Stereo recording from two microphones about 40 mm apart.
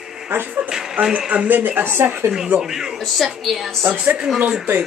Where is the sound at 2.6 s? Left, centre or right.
Centre.